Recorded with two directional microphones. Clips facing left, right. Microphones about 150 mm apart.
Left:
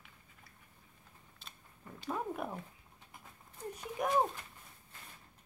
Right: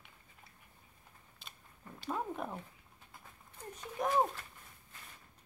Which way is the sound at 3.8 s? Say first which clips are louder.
Even; 10° left (ahead or behind).